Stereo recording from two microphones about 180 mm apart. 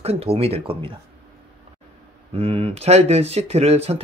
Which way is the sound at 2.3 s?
35° right (ahead or behind).